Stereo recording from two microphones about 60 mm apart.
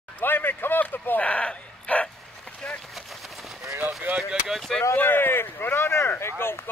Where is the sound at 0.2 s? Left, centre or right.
Left.